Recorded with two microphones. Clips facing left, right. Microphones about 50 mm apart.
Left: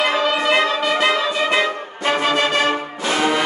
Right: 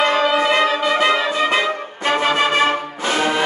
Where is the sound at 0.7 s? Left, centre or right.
Centre.